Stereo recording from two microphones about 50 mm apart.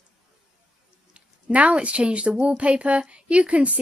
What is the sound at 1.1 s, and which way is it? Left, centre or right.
Speech, right.